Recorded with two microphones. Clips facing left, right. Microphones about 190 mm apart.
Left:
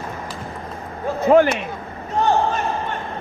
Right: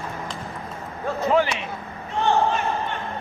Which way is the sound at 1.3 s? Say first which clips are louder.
Left 8 dB; 50° left (ahead or behind).